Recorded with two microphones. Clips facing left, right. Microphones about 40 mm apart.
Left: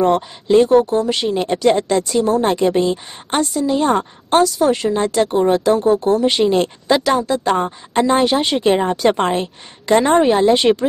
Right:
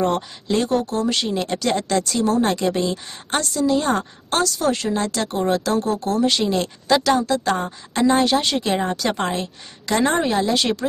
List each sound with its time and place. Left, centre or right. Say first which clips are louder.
0.0 s a woman's voice: left 6 dB; centre; by 6.7 s left
6.9 s a woman's voice: left 1 dB; centre